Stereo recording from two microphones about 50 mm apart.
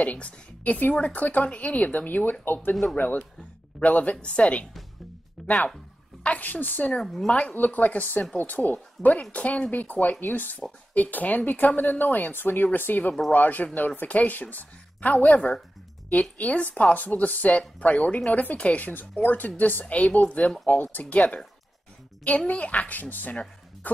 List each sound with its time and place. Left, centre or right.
0.0 s speech: left
3.0 s a woman's voice: left
6.2 s a woman's voice: left
7.0 s a woman's voice: centre
7.5 s a woman's voice: left
9.0 s a woman's voice: centre
9.3 s a woman's voice: left
22.5 s a woman's voice: left